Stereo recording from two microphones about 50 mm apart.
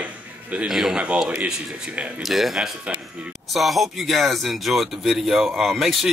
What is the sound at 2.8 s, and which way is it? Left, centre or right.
Music, right.